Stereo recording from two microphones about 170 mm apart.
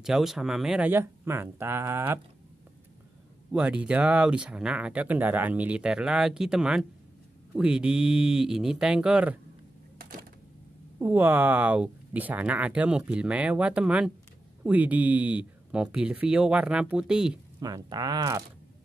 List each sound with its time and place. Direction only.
0.0 s speech: centre (ahead or behind)
3.5 s speech: 5° right (ahead or behind)
9.9 s a sound: 55° right (ahead or behind)
11.0 s speech: 10° right (ahead or behind)
17.6 s speech: 25° right (ahead or behind)